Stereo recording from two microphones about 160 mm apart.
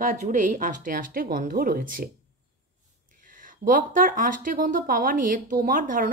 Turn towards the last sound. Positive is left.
turn(degrees=-60)  # may be behind; listen again after turning